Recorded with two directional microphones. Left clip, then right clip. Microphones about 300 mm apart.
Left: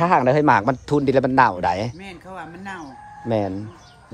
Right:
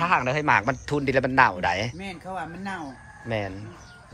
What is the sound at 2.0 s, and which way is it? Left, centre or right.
Speech, centre.